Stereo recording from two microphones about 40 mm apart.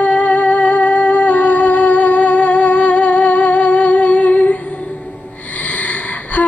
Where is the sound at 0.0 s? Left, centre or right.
Left.